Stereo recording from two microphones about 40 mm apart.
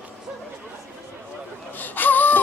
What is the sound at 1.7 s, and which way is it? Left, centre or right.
Wail, left.